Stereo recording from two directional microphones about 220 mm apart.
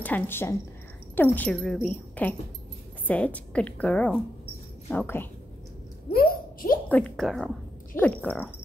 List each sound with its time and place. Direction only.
0.0 s a woman's voice: 10° left (ahead or behind)
6.1 s a sound: 40° left (ahead or behind)
6.9 s speech: 5° left (ahead or behind)